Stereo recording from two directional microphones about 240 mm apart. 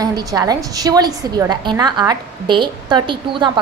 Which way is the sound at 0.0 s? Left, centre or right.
Centre.